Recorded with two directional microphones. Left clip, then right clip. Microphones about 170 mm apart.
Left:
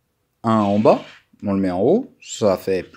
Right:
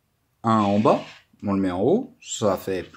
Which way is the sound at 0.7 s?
20° left (ahead or behind).